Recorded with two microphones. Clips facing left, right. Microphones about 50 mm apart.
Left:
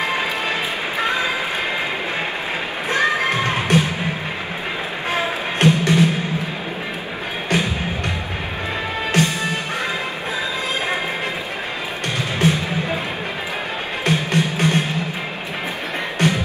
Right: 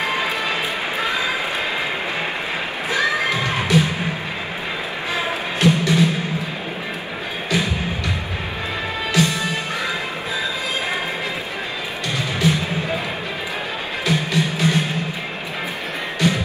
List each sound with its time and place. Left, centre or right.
0.0 s music: left
2.9 s a sound: left
5.1 s music: left
7.4 s music: left
9.1 s music: left
12.2 s music: left
14.0 s music: left
16.2 s music: left